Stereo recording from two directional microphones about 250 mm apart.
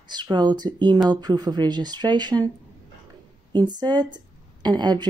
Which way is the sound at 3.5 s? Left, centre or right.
Centre.